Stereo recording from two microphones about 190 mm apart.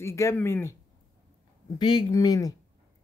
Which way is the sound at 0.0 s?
15° left (ahead or behind).